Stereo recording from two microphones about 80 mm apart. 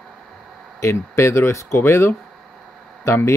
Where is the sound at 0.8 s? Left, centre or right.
Left.